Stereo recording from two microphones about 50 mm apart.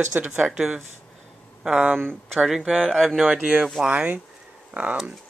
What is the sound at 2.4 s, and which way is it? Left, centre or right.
Speech, centre.